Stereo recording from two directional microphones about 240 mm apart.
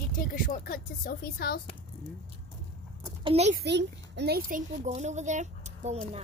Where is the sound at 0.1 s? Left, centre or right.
Left.